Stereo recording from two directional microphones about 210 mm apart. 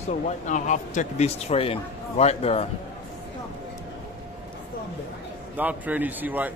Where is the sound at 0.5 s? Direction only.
35° left (ahead or behind).